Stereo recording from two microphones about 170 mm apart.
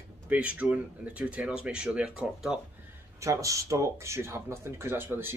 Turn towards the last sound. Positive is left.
turn(degrees=-15)  # may be behind; listen again after turning